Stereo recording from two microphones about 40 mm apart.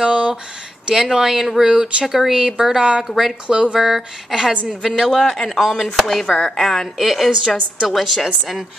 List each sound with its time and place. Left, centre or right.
0.0 s a sound: right
0.9 s speech: centre
3.4 s speech: right
3.8 s speech: centre
5.3 s a woman's voice: centre
7.0 s speech: centre
7.2 s speech: centre
7.9 s speech: centre